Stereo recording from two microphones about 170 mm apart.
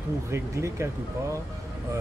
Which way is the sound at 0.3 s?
15° right (ahead or behind).